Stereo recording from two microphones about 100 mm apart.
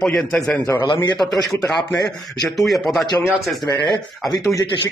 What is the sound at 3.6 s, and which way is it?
Speech, 45° left (ahead or behind).